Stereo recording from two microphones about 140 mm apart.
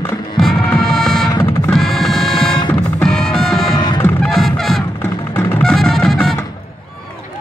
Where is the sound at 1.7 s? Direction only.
Centre (ahead or behind).